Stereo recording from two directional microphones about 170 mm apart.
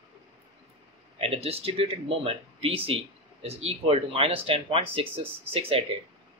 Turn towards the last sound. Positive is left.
turn(degrees=-35)  # may be behind; listen again after turning